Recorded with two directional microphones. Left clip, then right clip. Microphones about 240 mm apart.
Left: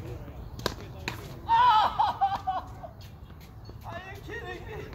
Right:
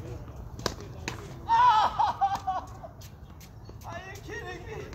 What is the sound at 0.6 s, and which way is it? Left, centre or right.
Basketball bounce, centre.